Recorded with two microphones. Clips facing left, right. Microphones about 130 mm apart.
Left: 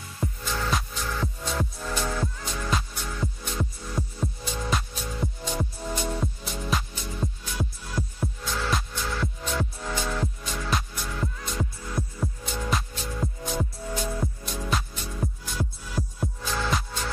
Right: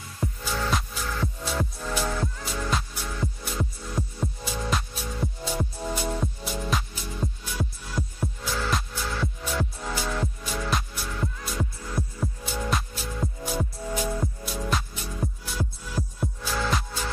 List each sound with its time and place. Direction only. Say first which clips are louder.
0.2 s music: right 1 dB; centre (ahead or behind)